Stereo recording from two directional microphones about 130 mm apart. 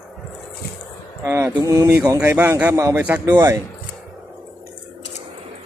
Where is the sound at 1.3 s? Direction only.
20° right (ahead or behind).